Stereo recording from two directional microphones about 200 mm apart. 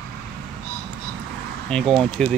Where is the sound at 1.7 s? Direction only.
Centre (ahead or behind).